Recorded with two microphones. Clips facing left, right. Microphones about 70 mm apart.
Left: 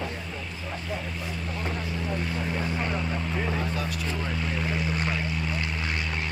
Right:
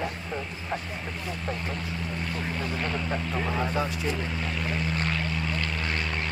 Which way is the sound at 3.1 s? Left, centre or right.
Centre.